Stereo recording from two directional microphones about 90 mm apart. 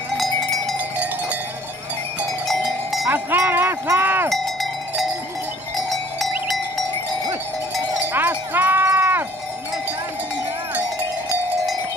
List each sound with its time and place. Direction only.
0.2 s cowbell: centre (ahead or behind)
2.4 s cowbell: centre (ahead or behind)
3.1 s cowbell: 25° right (ahead or behind)
3.8 s wind chime: 25° right (ahead or behind)
5.9 s cowbell: centre (ahead or behind)
8.1 s wind chime: 20° right (ahead or behind)
10.7 s a sound: 20° right (ahead or behind)